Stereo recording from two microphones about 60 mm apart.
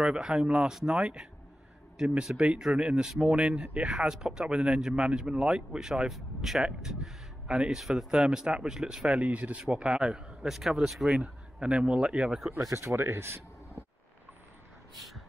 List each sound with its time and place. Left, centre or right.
0.0 s speech: centre
12.7 s speech: right
15.0 s a sound: centre